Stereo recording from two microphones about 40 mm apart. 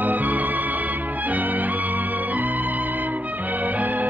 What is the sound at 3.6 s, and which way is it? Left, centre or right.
Music, right.